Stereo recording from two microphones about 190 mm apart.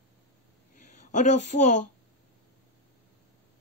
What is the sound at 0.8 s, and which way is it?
Speech, 40° left (ahead or behind).